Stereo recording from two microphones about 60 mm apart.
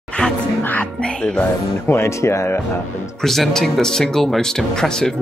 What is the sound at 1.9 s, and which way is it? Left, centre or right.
Speech, left.